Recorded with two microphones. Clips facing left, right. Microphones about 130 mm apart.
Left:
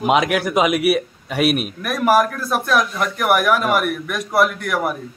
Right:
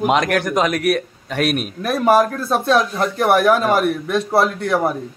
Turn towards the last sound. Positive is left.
turn(degrees=-30)  # may be behind; listen again after turning